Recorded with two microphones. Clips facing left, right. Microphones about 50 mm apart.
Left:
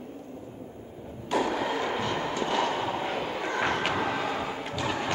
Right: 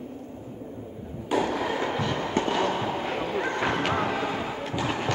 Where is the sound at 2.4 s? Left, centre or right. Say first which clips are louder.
Right 4 dB; right.